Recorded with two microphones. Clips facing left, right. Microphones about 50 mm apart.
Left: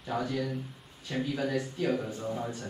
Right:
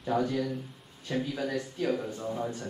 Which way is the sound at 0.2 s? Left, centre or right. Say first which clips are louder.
Right 2 dB; centre.